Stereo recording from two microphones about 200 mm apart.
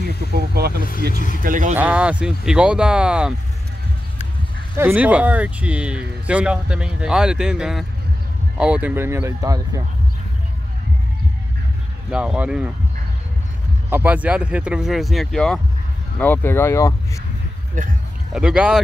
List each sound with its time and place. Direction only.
0.0 s speech: 50° right (ahead or behind)
1.1 s speech: 40° left (ahead or behind)
1.4 s speech: 40° right (ahead or behind)
1.8 s speech: 5° right (ahead or behind)
4.7 s speech: 10° right (ahead or behind)
12.1 s speech: 5° right (ahead or behind)
13.8 s speech: 10° right (ahead or behind); by 16.9 s 15° left (ahead or behind)
17.8 s speech: 40° right (ahead or behind)
18.3 s speech: 5° right (ahead or behind)